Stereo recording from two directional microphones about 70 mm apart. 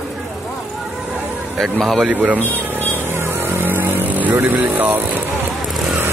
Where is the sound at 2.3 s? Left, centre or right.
Left.